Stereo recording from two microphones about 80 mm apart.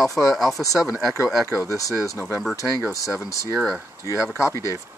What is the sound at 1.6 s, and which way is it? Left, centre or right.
Speech, left.